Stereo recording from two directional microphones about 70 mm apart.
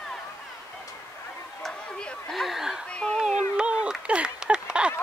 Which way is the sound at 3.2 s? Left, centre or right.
Centre.